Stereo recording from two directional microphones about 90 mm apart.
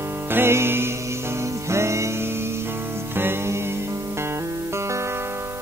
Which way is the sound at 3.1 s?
25° right (ahead or behind).